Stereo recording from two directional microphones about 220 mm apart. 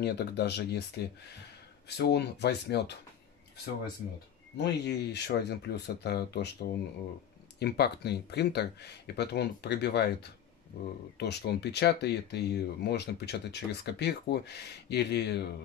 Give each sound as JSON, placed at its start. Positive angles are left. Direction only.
{"t": 0.0, "sound": "speech", "side_deg": 50}
{"t": 4.6, "sound": "speech", "side_deg": 50}